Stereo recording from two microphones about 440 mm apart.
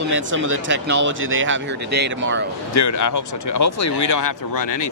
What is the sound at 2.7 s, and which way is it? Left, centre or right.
Speech, left.